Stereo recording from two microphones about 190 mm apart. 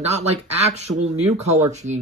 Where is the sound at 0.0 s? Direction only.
35° right (ahead or behind).